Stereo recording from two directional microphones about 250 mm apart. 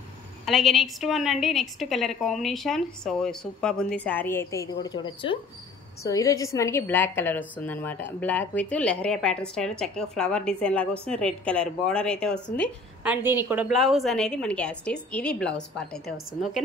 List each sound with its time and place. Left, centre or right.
0.5 s a woman's voice: centre
13.0 s a woman's voice: centre